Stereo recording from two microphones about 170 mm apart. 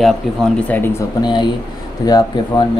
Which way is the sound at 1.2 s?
25° left (ahead or behind).